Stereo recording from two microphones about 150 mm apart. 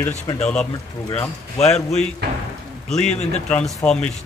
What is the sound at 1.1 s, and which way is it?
Speech, 50° left (ahead or behind).